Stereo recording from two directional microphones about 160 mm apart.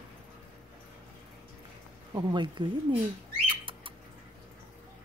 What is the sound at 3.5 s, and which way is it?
Bird, 30° right (ahead or behind).